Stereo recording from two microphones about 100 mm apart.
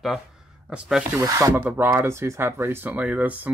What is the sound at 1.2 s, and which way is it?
Speech, 35° right (ahead or behind).